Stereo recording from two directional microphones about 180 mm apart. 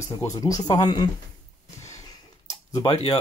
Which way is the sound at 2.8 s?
30° left (ahead or behind).